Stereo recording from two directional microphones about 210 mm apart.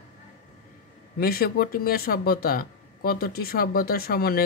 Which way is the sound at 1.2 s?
45° left (ahead or behind).